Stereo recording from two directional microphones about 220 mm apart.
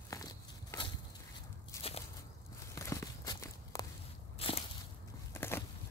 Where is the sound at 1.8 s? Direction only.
25° left (ahead or behind).